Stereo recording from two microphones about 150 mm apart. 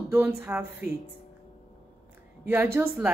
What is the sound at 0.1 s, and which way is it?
Speech, 15° right (ahead or behind).